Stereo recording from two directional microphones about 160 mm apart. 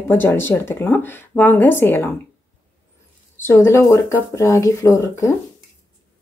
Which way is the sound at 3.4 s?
15° left (ahead or behind).